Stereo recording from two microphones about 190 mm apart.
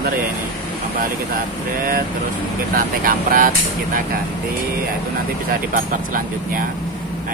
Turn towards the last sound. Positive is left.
turn(degrees=-45)  # may be behind; listen again after turning